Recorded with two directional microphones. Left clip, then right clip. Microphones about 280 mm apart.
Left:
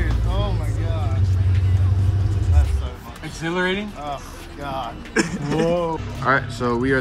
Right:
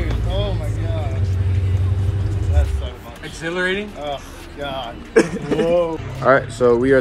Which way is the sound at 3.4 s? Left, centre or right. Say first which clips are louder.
Right 1 dB; left.